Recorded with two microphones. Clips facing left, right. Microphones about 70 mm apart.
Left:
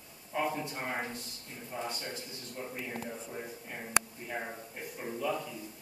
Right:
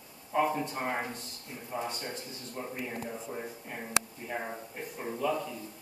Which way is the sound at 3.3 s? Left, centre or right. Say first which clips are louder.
Right 2 dB; centre.